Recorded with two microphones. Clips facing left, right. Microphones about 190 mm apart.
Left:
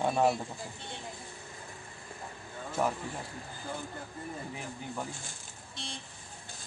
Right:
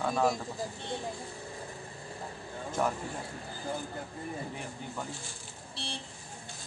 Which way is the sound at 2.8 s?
5° left (ahead or behind).